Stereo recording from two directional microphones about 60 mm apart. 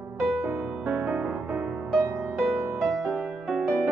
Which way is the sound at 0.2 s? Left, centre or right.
Centre.